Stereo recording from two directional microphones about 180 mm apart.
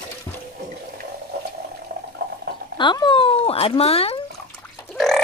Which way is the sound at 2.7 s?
25° left (ahead or behind).